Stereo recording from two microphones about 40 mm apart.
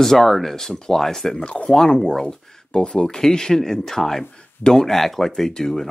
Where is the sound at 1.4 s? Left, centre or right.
Left.